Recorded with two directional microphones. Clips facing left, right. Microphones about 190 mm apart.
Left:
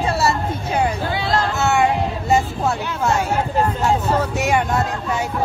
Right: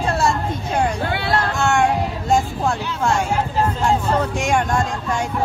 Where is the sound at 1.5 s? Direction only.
5° left (ahead or behind).